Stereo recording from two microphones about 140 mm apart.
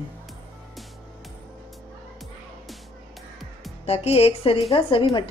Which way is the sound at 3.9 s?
45° left (ahead or behind).